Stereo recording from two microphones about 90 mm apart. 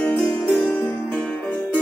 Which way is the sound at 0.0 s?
20° left (ahead or behind).